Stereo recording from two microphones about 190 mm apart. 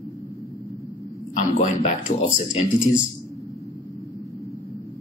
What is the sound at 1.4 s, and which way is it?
A woman's voice, 40° left (ahead or behind).